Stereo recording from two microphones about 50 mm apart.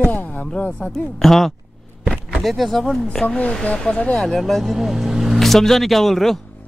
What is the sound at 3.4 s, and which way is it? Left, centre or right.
Speech, left.